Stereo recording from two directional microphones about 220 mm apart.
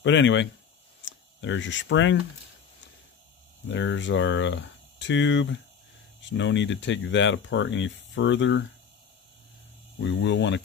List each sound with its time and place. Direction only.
0.0 s speech: 55° left (ahead or behind)
3.6 s speech: 55° left (ahead or behind)
9.9 s speech: 55° left (ahead or behind)